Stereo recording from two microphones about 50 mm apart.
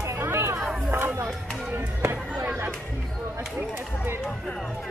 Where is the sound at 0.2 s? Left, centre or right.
Right.